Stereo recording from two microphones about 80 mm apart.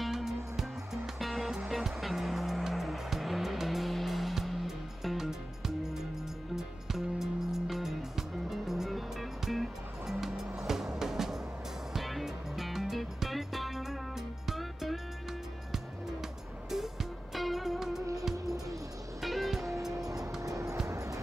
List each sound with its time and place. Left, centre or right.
0.0 s music: centre
6.5 s music: centre
16.7 s music: centre
19.2 s music: centre
20.3 s music: right
20.8 s a sound: right